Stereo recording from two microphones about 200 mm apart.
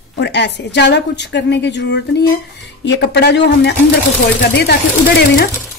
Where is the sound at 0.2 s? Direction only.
60° left (ahead or behind).